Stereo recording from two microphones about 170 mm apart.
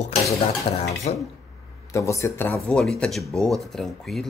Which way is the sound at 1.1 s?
40° left (ahead or behind).